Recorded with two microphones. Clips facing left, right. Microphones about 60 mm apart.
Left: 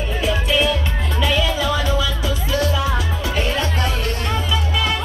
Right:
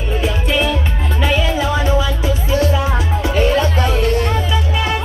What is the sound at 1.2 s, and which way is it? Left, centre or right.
Music, right.